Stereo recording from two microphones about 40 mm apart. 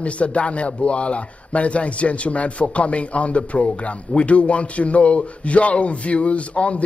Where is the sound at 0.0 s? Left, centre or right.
Left.